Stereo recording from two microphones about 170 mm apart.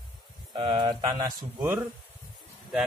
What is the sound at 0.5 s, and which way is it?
Speech, 30° right (ahead or behind).